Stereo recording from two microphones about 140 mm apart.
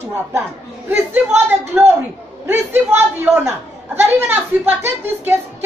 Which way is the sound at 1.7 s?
10° right (ahead or behind).